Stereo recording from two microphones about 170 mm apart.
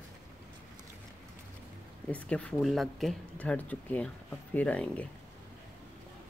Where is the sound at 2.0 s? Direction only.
5° left (ahead or behind).